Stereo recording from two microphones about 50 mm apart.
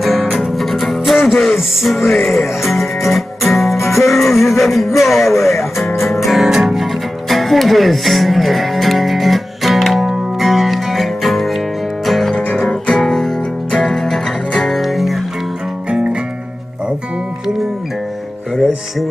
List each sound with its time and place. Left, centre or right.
0.0 s music: centre
12.3 s music: centre
15.9 s music: centre